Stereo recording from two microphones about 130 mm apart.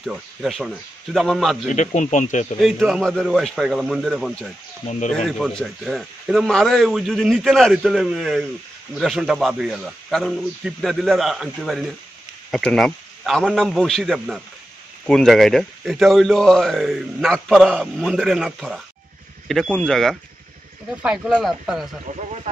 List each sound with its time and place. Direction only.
0.0 s a man's voice: centre (ahead or behind)
2.0 s speech: 70° left (ahead or behind)
2.6 s a man's voice: centre (ahead or behind)
22.0 s speech: 60° right (ahead or behind)